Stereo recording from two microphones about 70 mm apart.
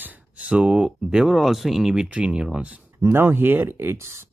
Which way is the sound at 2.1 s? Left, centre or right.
Centre.